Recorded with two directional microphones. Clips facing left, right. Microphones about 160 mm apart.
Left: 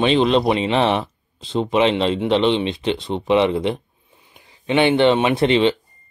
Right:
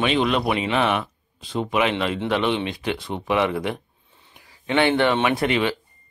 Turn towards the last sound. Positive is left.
turn(degrees=25)  # may be behind; listen again after turning